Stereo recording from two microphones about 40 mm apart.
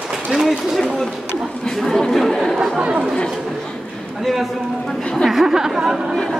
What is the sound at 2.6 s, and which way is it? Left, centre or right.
Speech, right.